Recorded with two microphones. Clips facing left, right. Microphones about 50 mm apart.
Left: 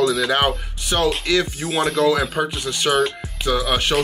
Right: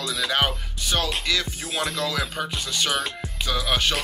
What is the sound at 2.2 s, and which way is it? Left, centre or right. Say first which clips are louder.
Speech: left 6 dB; centre.